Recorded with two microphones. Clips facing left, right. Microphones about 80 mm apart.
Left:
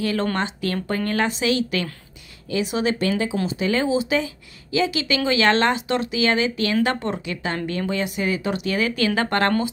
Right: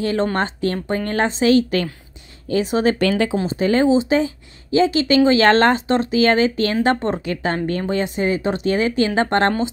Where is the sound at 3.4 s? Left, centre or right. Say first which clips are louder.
Right 7 dB; right.